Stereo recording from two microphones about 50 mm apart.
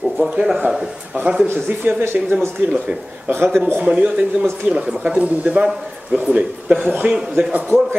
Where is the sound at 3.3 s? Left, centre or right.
Right.